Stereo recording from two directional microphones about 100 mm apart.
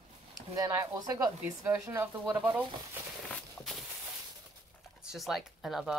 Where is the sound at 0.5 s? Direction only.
35° right (ahead or behind).